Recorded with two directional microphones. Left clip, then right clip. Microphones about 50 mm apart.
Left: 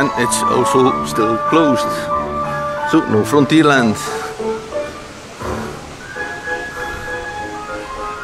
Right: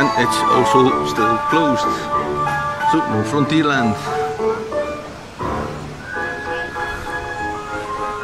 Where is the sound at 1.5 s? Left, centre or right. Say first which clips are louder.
Left 2 dB; left.